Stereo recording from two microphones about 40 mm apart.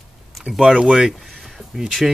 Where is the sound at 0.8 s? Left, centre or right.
Right.